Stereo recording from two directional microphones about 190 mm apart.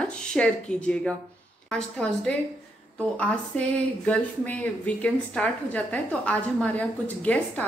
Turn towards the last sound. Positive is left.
turn(degrees=5)  # may be behind; listen again after turning